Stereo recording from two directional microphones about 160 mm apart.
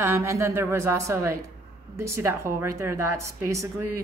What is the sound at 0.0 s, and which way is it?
A woman's voice, 15° right (ahead or behind).